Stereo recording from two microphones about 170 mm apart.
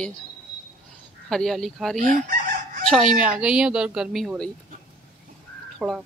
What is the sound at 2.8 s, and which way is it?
A woman's voice, centre (ahead or behind).